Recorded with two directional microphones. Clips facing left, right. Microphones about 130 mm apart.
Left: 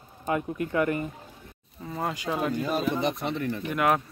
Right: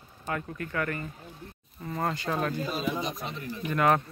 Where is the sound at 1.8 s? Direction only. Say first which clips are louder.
Even; 5° left (ahead or behind).